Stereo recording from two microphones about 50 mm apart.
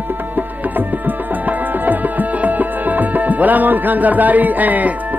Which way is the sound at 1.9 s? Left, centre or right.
Right.